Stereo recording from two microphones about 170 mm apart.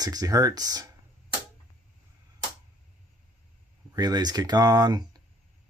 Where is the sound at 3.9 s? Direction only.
25° right (ahead or behind).